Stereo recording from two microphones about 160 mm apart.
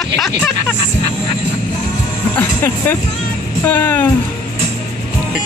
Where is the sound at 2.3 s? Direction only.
10° left (ahead or behind).